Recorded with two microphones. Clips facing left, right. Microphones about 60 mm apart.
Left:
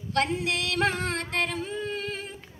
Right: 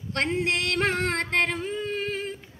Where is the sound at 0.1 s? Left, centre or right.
Right.